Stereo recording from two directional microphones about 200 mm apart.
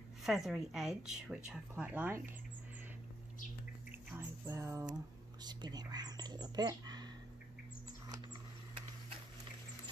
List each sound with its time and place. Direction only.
0.2 s speech: centre (ahead or behind)
4.1 s a sound: 15° right (ahead or behind)
5.4 s speech: 20° right (ahead or behind)